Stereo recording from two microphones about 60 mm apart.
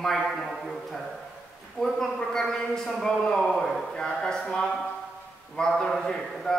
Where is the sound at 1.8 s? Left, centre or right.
Centre.